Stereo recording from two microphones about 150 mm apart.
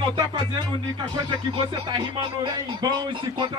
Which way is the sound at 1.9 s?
30° right (ahead or behind).